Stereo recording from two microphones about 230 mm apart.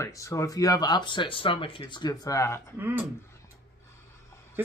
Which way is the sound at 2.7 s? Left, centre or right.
Centre.